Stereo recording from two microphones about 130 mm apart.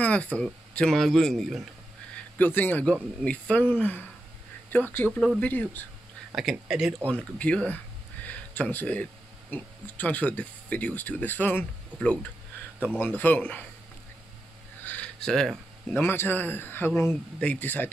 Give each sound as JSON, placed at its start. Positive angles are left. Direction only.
{"t": 0.0, "sound": "speech", "side_deg": 10}
{"t": 2.3, "sound": "speech", "side_deg": 15}
{"t": 6.3, "sound": "speech", "side_deg": -5}
{"t": 7.3, "sound": "a sound", "side_deg": 10}
{"t": 9.5, "sound": "speech", "side_deg": 10}
{"t": 14.8, "sound": "a sound", "side_deg": 10}
{"t": 16.0, "sound": "speech", "side_deg": 15}